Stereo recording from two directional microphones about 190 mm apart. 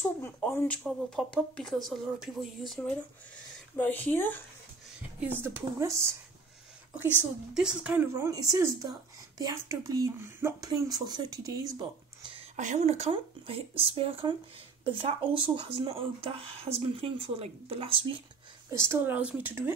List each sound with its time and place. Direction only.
0.0 s speech: 10° left (ahead or behind)
5.2 s a woman's voice: 10° right (ahead or behind)
7.5 s a woman's voice: 5° right (ahead or behind)
12.2 s a sound: 25° right (ahead or behind)
12.5 s speech: 40° right (ahead or behind)
18.7 s a woman's voice: 15° right (ahead or behind)